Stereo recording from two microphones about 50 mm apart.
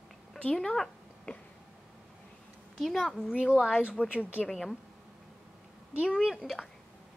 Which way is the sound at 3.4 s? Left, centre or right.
Centre.